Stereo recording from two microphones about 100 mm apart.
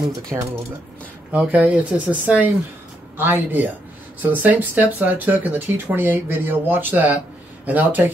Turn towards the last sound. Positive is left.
turn(degrees=-15)  # may be behind; listen again after turning